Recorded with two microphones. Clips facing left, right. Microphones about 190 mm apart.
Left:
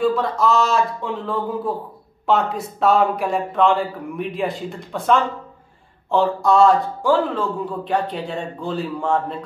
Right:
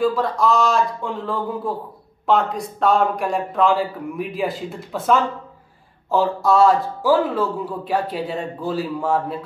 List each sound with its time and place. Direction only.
0.0 s a man's voice: centre (ahead or behind)